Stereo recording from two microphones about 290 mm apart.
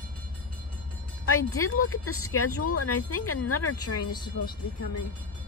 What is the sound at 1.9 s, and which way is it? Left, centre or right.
Speech, left.